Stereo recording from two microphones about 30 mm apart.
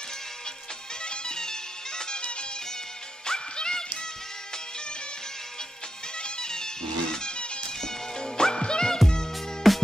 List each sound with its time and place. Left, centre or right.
1.0 s music: left
3.3 s music: left
6.2 s music: left
9.6 s music: centre